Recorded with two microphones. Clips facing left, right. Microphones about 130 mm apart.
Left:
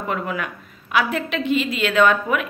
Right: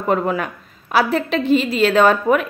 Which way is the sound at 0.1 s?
35° right (ahead or behind).